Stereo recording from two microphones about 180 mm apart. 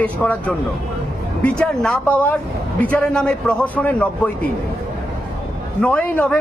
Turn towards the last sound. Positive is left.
turn(degrees=5)  # may be behind; listen again after turning